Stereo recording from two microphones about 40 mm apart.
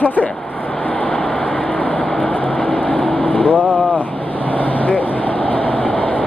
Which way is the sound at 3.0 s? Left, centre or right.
Centre.